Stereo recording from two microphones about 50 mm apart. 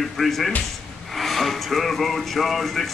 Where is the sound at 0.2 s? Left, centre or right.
Centre.